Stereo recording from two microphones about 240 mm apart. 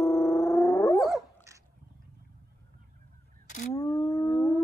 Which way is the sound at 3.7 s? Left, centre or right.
Centre.